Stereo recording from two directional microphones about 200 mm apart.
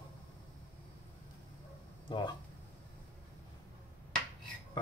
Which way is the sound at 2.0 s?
25° left (ahead or behind).